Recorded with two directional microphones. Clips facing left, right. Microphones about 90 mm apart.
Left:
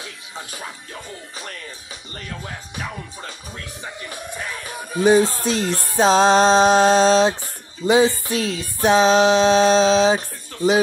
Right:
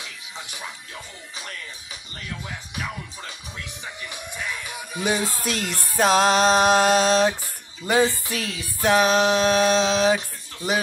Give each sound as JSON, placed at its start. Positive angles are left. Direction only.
{"t": 0.0, "sound": "music", "side_deg": 35}
{"t": 3.8, "sound": "music", "side_deg": 35}